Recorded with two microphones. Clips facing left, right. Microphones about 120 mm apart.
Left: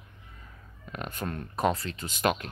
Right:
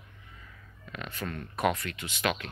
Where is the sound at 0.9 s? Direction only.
45° left (ahead or behind).